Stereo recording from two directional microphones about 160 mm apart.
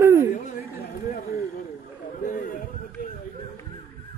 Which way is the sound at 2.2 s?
55° left (ahead or behind).